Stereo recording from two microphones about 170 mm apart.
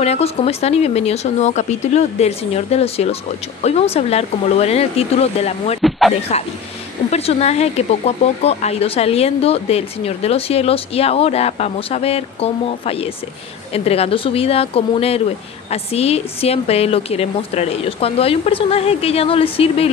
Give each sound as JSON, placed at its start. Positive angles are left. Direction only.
{"t": 0.0, "sound": "speech", "side_deg": 40}
{"t": 5.8, "sound": "speech", "side_deg": 0}
{"t": 7.1, "sound": "speech", "side_deg": 35}